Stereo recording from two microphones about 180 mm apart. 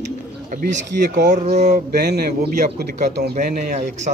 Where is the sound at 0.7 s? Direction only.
75° right (ahead or behind).